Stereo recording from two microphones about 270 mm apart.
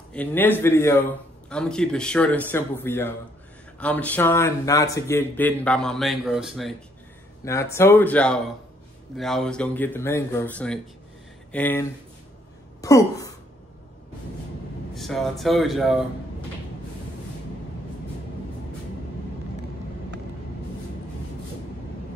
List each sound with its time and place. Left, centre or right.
0.1 s speech: centre
15.0 s speech: centre